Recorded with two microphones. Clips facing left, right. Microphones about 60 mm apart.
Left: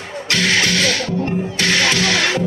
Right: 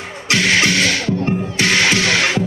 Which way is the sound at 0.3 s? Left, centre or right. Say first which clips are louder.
Right 2 dB; centre.